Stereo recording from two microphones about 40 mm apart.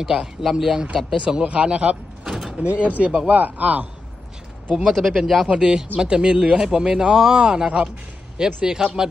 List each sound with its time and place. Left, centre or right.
0.0 s a man's voice: centre
1.1 s speech: right
4.9 s speech: centre
5.6 s a man's voice: centre